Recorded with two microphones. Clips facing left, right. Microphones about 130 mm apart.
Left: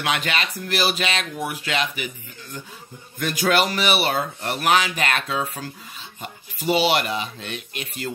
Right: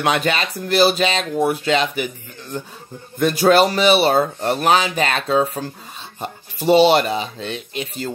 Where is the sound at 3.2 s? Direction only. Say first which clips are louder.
Right 7 dB; 35° right (ahead or behind).